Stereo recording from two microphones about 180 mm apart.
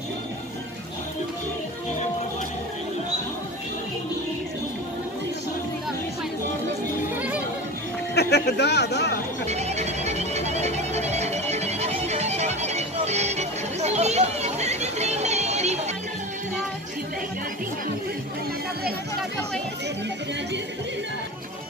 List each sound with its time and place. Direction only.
7.2 s music: 10° right (ahead or behind)
8.1 s speech: 65° left (ahead or behind)
9.5 s music: 40° right (ahead or behind)